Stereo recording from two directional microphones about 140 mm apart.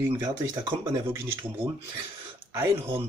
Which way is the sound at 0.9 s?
15° right (ahead or behind).